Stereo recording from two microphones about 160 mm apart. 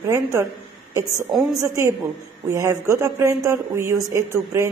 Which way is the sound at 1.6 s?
20° right (ahead or behind).